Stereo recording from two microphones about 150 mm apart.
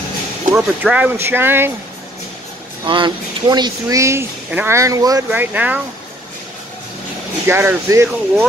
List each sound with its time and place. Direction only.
0.6 s speech: 10° right (ahead or behind)
2.9 s speech: 30° right (ahead or behind)
5.3 s speech: 10° right (ahead or behind)
7.4 s speech: 15° right (ahead or behind)